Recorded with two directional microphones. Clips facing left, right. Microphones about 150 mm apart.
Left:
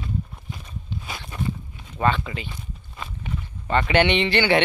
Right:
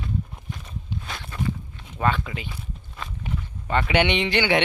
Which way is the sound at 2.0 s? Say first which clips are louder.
Left 2 dB; 5° right (ahead or behind).